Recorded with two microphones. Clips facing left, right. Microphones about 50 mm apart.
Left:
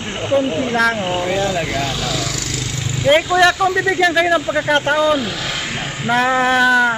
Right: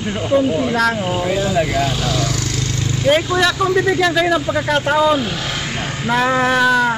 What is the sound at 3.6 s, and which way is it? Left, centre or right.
Speech, centre.